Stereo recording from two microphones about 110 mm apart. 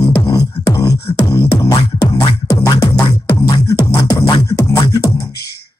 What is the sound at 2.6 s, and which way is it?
Music, 35° left (ahead or behind).